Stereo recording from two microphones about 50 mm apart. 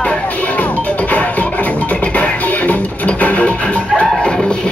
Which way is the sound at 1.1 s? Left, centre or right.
Left.